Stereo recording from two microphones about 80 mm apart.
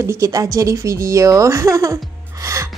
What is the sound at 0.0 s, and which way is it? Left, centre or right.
A woman's voice, right.